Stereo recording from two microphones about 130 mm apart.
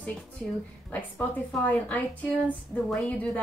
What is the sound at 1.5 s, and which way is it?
A woman's voice, 10° left (ahead or behind).